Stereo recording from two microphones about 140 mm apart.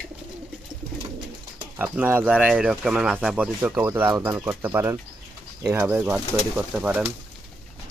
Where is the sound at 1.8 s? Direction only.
15° right (ahead or behind).